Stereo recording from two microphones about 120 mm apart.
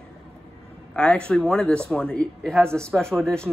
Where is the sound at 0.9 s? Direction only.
10° left (ahead or behind).